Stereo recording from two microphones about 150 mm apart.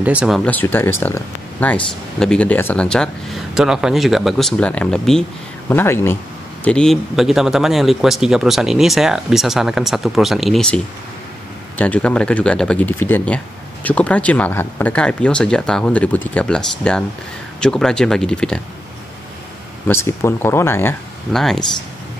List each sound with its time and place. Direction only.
0.0 s speech: 10° right (ahead or behind)
0.5 s speech: 10° left (ahead or behind)
5.7 s speech: 15° left (ahead or behind)
11.8 s speech: 10° left (ahead or behind)
19.9 s speech: 15° left (ahead or behind)
21.3 s speech: centre (ahead or behind)